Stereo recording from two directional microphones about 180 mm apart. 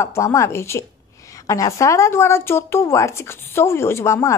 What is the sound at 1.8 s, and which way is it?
A woman's voice, 15° left (ahead or behind).